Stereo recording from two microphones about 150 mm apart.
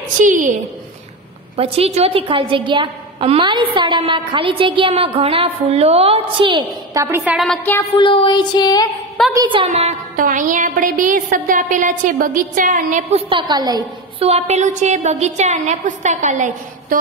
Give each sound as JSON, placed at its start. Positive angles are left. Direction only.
{"t": 0.2, "sound": "a woman's voice", "side_deg": -60}
{"t": 1.6, "sound": "a woman's voice", "side_deg": -40}
{"t": 8.0, "sound": "a sound", "side_deg": 35}
{"t": 9.3, "sound": "a woman's voice", "side_deg": -30}
{"t": 9.7, "sound": "music", "side_deg": -50}
{"t": 10.2, "sound": "a woman's voice", "side_deg": -60}
{"t": 13.3, "sound": "a woman's voice", "side_deg": -30}
{"t": 14.2, "sound": "a woman's voice", "side_deg": -45}